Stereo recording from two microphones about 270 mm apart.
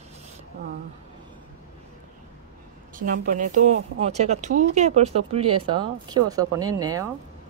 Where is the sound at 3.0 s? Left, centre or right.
Right; by 7.1 s centre.